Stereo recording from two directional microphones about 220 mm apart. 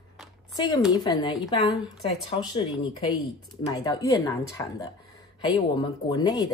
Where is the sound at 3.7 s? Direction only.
20° left (ahead or behind).